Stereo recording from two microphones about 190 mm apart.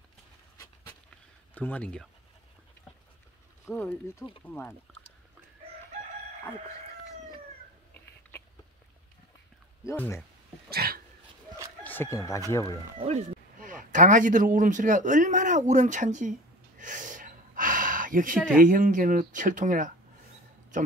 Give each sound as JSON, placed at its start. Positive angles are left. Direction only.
{"t": 1.5, "sound": "speech", "side_deg": 10}
{"t": 3.6, "sound": "speech", "side_deg": 10}
{"t": 9.8, "sound": "speech", "side_deg": 15}
{"t": 10.7, "sound": "a sound", "side_deg": -55}
{"t": 11.8, "sound": "speech", "side_deg": 10}
{"t": 13.0, "sound": "speech", "side_deg": -40}